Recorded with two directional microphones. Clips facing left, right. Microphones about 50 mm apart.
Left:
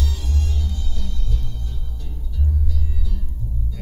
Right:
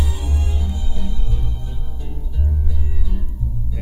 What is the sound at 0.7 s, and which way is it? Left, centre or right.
Music, right.